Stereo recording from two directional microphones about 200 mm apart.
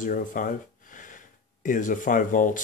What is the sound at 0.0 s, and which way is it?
Speech, 40° left (ahead or behind).